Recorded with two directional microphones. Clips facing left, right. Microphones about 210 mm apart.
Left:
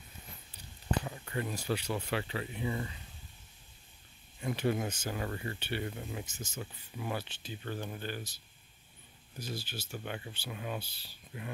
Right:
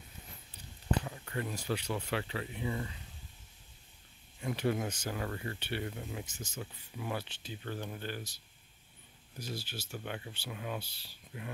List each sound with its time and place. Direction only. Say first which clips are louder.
1.0 s speech: left 1 dB; 15° left (ahead or behind)
4.4 s speech: left 1 dB; 10° left (ahead or behind)
5.2 s speech: left 1 dB; 15° left (ahead or behind)
5.6 s speech: left 1 dB; 5° left (ahead or behind)
9.4 s speech: left 1 dB; centre (ahead or behind)
10.8 s speech: even; centre (ahead or behind)